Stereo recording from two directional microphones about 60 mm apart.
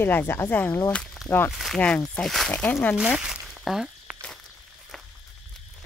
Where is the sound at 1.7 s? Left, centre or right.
Centre.